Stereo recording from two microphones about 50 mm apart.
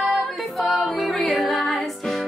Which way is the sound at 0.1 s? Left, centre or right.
Centre.